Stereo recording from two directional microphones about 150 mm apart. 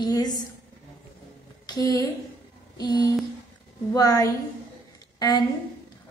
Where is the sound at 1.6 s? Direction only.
25° left (ahead or behind).